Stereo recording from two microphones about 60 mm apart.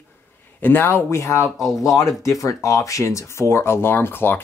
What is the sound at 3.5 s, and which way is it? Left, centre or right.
Speech, left.